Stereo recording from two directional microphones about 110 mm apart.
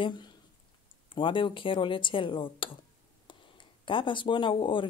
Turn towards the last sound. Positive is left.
turn(degrees=50)  # may be behind; listen again after turning